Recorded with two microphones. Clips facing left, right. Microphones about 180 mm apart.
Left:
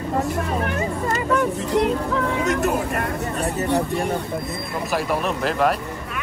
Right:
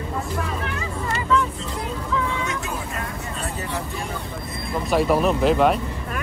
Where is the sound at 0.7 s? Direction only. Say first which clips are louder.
Left 5 dB; 45° left (ahead or behind).